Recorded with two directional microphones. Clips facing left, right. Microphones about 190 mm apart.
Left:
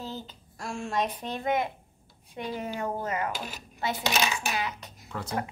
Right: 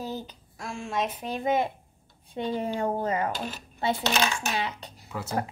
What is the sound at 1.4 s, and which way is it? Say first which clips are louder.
Speech: right 3 dB; 25° right (ahead or behind).